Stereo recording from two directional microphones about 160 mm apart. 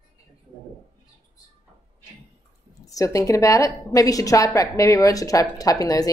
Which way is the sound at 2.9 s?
20° left (ahead or behind).